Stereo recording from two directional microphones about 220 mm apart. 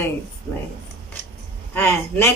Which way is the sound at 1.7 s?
10° left (ahead or behind).